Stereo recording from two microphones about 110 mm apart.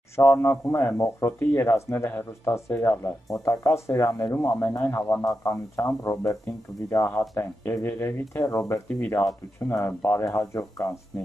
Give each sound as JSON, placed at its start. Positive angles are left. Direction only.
{"t": 0.1, "sound": "speech", "side_deg": 20}
{"t": 8.8, "sound": "speech", "side_deg": 15}